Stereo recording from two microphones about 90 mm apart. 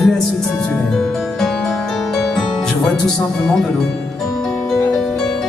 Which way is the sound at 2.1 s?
5° left (ahead or behind).